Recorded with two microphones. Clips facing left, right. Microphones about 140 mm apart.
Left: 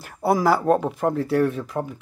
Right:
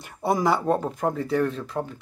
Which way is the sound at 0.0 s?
5° left (ahead or behind).